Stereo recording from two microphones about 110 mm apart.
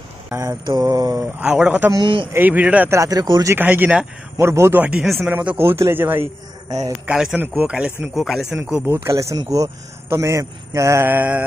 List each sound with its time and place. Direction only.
0.3 s speech: 25° right (ahead or behind)
1.4 s speech: 10° right (ahead or behind)
2.0 s a man's voice: 50° right (ahead or behind)
2.3 s speech: 15° right (ahead or behind)
2.9 s speech: 30° right (ahead or behind)
3.4 s speech: 20° right (ahead or behind)
5.0 s speech: centre (ahead or behind)
5.3 s speech: 15° right (ahead or behind)
7.1 s speech: 10° right (ahead or behind)
8.8 s speech: 25° right (ahead or behind)